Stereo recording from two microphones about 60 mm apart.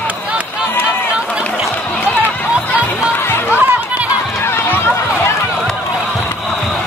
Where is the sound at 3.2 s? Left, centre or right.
Left.